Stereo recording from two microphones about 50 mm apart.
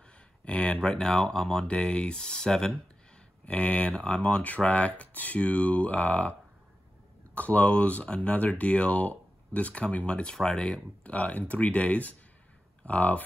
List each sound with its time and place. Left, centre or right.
0.5 s a sound: left
0.8 s speech: centre
3.4 s speech: left
7.3 s speech: left